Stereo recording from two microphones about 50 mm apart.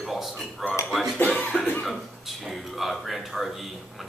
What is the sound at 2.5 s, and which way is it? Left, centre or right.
Speech, centre.